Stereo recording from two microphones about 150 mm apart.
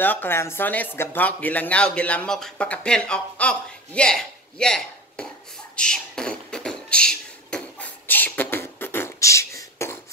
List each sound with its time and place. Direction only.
0.0 s speech: 10° left (ahead or behind)
5.8 s beatboxing: 5° left (ahead or behind)